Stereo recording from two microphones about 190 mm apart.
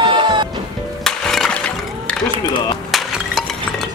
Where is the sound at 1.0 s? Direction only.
Centre (ahead or behind).